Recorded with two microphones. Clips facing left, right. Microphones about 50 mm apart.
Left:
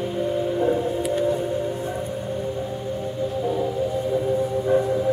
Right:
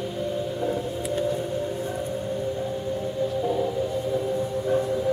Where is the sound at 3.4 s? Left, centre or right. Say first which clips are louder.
Left 2 dB; centre.